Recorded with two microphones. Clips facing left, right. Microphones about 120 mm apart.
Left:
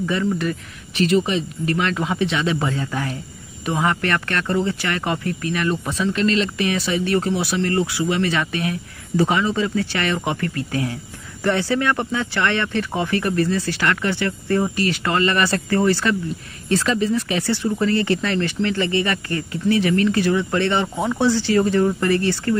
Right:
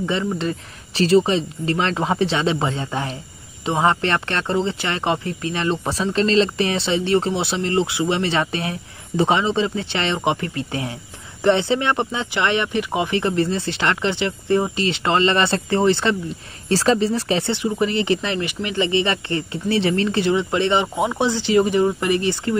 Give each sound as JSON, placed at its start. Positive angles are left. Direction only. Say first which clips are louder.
{"t": 0.0, "sound": "speech", "louder": "left 1 dB", "side_deg": -25}
{"t": 17.5, "sound": "speech", "louder": "left 1 dB", "side_deg": -15}